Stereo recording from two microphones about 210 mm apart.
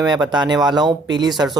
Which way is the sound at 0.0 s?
20° right (ahead or behind).